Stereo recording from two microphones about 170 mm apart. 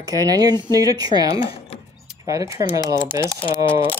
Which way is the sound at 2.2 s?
20° right (ahead or behind).